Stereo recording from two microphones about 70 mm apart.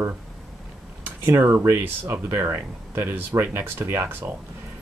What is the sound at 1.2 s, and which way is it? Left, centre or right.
Speech, right.